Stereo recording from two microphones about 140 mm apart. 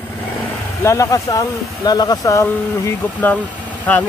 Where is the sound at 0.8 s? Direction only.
25° left (ahead or behind).